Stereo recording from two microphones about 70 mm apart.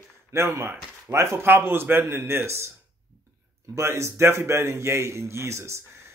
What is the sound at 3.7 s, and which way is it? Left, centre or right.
A man's voice, right.